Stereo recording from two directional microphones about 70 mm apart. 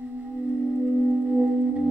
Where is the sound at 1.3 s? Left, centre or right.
Centre.